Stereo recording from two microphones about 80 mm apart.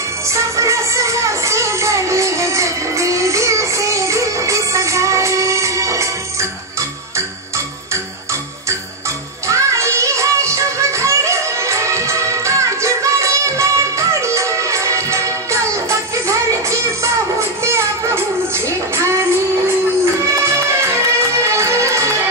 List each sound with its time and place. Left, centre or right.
0.3 s music: right
9.5 s music: right
20.8 s music: right